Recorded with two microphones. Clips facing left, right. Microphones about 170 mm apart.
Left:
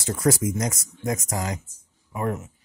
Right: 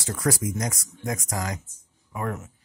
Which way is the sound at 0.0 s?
25° left (ahead or behind).